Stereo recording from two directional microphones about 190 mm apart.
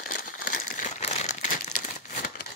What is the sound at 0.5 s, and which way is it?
Crumpling, 45° left (ahead or behind).